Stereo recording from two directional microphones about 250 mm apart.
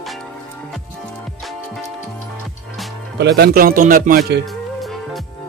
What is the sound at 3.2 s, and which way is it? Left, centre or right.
Speech, right.